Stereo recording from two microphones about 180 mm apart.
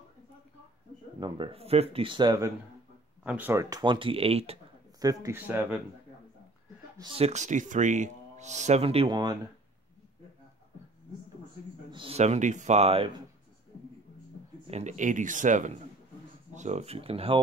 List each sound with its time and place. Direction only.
1.2 s speech: 30° right (ahead or behind)
3.3 s speech: 10° right (ahead or behind)
3.8 s speech: 25° right (ahead or behind)
5.0 s speech: 15° right (ahead or behind)
7.0 s speech: 30° right (ahead or behind)
11.9 s speech: 30° right (ahead or behind)
14.7 s speech: 40° right (ahead or behind)